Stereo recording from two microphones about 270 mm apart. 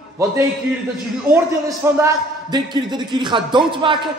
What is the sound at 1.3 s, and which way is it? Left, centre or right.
A man's voice, centre.